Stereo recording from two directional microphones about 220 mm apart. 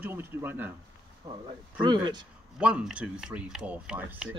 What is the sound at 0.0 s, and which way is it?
Speech, 10° right (ahead or behind).